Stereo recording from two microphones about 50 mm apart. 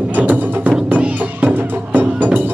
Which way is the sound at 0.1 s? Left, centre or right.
Right.